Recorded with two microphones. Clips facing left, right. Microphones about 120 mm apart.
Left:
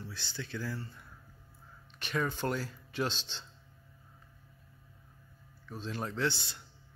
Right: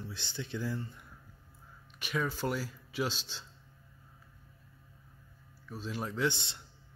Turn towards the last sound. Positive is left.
turn(degrees=-25)  # may be behind; listen again after turning